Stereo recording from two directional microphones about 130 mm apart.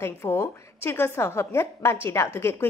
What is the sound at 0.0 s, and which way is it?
A woman's voice, 20° left (ahead or behind).